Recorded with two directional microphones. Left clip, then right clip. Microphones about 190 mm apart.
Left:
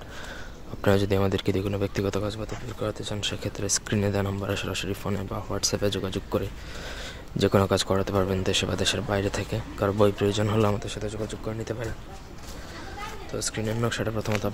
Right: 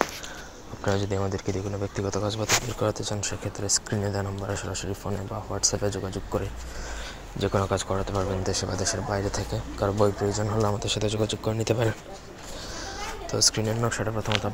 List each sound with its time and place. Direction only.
0.8 s speech: 35° left (ahead or behind)
2.2 s speech: centre (ahead or behind)
3.2 s speech: 20° left (ahead or behind)
10.9 s speech: 15° right (ahead or behind)
13.3 s speech: centre (ahead or behind)
13.7 s speech: 20° left (ahead or behind)